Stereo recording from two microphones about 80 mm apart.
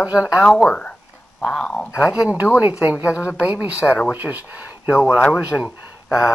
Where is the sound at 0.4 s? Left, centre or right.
Centre.